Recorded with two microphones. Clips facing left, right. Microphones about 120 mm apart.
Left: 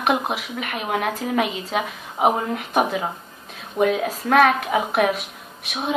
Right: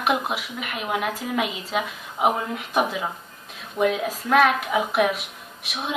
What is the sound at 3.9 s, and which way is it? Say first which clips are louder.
A woman's voice: left 2 dB; 50° left (ahead or behind).